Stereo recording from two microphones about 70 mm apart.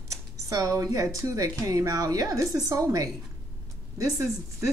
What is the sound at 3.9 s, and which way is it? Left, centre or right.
Speech, right.